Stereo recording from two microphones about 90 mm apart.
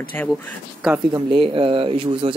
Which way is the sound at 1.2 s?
75° right (ahead or behind).